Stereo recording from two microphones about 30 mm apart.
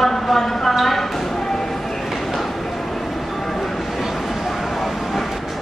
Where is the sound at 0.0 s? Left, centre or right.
Centre.